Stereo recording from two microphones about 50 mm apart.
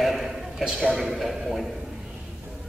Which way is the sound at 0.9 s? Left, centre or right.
Centre.